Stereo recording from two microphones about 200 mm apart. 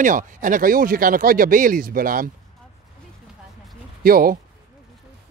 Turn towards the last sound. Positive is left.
turn(degrees=-45)  # may be behind; listen again after turning